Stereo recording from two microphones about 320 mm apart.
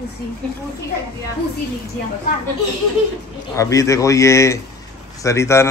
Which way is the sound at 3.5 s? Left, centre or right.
Centre.